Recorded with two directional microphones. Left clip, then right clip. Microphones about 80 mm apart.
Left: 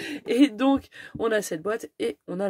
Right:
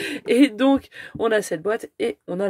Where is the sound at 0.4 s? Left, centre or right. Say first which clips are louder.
Right 3 dB; right.